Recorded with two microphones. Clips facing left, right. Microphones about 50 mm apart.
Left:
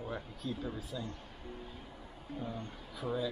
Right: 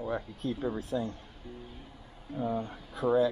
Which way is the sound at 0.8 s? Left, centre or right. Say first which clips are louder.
Right 9 dB; right.